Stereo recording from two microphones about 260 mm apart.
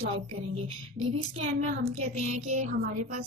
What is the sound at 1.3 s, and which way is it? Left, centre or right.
A woman's voice, right.